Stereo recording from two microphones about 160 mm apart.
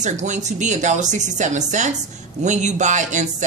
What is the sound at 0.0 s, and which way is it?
Speech, 50° right (ahead or behind).